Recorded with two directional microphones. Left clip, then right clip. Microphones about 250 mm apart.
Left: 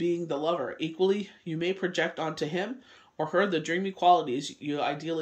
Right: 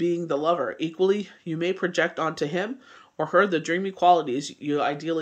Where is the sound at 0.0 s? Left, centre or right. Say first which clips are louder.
Right 4 dB; centre.